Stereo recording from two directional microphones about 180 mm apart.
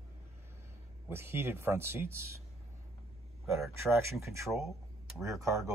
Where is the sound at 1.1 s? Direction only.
15° right (ahead or behind).